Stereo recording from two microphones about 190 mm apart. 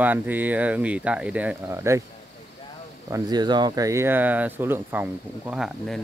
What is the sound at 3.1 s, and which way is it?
Speech, 20° right (ahead or behind).